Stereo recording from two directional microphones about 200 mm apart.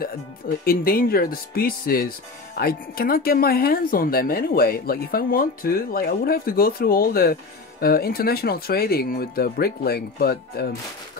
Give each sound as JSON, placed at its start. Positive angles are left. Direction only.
{"t": 0.7, "sound": "speech", "side_deg": 45}